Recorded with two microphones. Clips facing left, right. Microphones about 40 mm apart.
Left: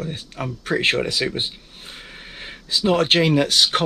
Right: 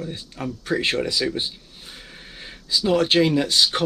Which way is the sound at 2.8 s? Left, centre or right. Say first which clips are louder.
Left 1 dB; left.